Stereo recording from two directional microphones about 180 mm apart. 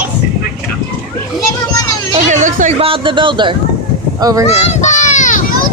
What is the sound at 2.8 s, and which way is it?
Speech, 30° right (ahead or behind).